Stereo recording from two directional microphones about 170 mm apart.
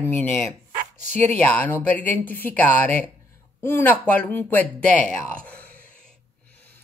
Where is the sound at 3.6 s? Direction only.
10° left (ahead or behind).